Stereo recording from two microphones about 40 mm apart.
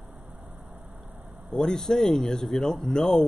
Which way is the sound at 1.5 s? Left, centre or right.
Centre.